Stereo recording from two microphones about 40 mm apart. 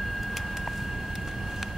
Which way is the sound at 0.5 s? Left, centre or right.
Centre.